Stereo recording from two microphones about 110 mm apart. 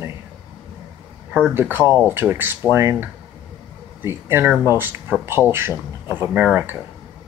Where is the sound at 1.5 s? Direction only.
20° right (ahead or behind).